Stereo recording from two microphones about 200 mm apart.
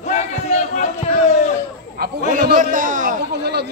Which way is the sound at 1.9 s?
45° right (ahead or behind).